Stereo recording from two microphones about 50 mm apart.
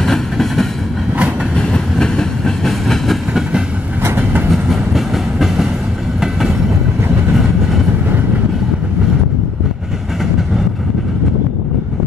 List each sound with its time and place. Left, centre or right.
0.0 s train: centre
4.0 s train: right
4.5 s train: centre